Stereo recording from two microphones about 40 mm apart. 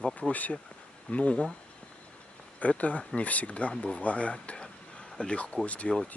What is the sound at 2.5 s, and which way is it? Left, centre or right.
Speech, left.